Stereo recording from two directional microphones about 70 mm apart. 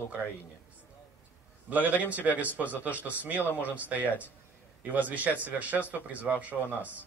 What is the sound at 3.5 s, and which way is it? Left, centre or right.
Speech, left.